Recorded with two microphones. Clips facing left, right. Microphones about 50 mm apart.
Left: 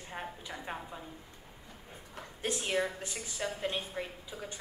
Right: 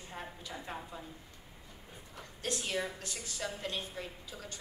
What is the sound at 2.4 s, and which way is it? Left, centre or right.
A woman's voice, left.